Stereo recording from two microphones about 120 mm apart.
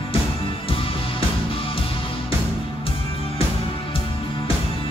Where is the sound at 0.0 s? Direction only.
50° left (ahead or behind).